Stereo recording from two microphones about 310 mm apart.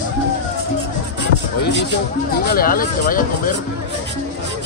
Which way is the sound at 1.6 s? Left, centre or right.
Left.